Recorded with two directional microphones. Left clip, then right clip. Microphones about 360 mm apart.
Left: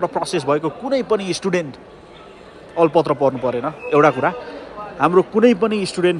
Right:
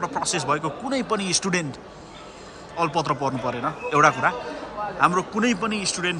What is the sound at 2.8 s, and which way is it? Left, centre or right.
A man's voice, centre.